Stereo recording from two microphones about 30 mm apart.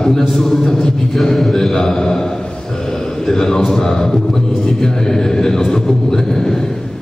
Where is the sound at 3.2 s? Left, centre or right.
Centre.